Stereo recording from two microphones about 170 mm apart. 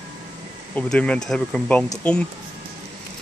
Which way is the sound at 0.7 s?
5° left (ahead or behind).